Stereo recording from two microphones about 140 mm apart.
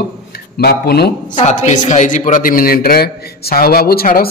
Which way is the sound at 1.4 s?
60° left (ahead or behind).